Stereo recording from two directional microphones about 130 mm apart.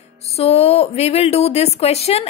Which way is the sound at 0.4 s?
50° left (ahead or behind).